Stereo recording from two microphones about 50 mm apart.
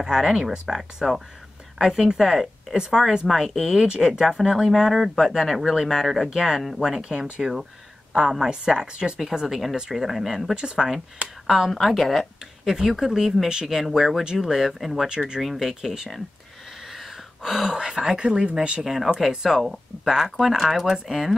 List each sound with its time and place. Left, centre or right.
0.0 s speech: centre
3.3 s speech: centre
3.8 s speech: centre
7.1 s speech: centre
9.5 s speech: centre
10.5 s speech: centre
11.4 s speech: centre
12.6 s speech: centre
15.0 s speech: centre
15.4 s speech: centre; by 18.9 s right
19.1 s speech: centre